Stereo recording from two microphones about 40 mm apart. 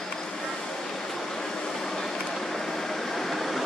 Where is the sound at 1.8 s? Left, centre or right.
Centre.